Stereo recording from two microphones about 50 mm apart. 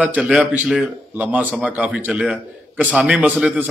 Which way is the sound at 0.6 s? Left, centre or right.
Centre.